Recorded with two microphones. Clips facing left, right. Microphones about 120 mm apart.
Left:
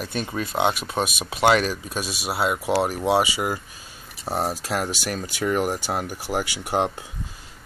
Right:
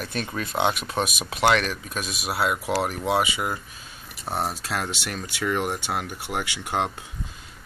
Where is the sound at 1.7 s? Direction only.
30° left (ahead or behind).